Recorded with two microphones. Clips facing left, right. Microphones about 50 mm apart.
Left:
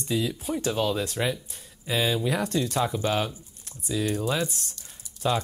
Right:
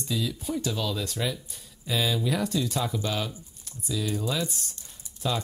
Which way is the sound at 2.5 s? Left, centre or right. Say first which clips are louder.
Left 2 dB; left.